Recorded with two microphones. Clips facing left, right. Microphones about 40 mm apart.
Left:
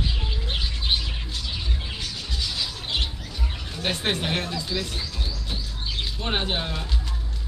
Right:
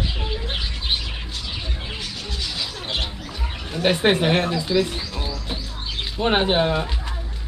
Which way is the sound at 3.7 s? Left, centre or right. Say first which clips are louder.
Right 8 dB; right.